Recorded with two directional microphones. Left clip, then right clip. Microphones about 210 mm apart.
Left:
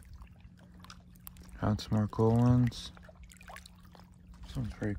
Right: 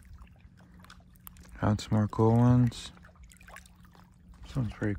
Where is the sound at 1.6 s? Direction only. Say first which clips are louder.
Right 3 dB; 10° left (ahead or behind).